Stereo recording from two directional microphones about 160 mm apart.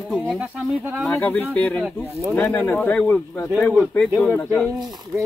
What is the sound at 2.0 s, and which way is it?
Speech, 15° right (ahead or behind).